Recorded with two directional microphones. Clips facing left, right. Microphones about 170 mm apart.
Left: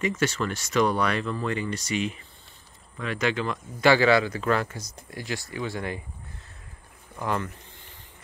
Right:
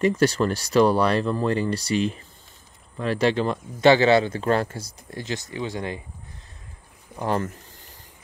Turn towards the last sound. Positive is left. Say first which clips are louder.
# right 3 dB
turn(degrees=-35)  # may be behind; listen again after turning